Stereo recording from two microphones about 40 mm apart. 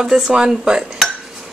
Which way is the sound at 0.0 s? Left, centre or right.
Centre.